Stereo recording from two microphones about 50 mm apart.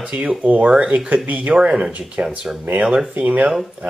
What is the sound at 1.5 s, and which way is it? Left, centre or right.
Speech, right.